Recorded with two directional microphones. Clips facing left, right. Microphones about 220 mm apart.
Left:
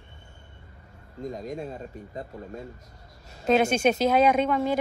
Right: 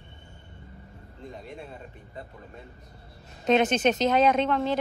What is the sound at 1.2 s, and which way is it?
Speech, 40° left (ahead or behind).